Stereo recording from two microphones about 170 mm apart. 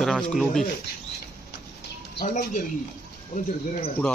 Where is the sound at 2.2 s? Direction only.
50° left (ahead or behind).